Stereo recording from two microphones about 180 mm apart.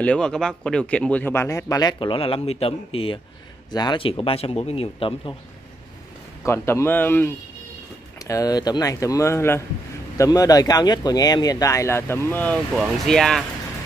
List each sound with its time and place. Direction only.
0.0 s speech: 5° left (ahead or behind); by 5.3 s 30° left (ahead or behind)
6.4 s speech: 15° left (ahead or behind)